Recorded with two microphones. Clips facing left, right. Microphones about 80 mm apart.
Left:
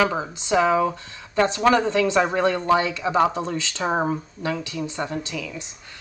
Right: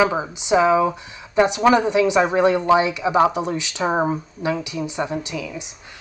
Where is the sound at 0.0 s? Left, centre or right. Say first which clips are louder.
Right 3 dB; centre.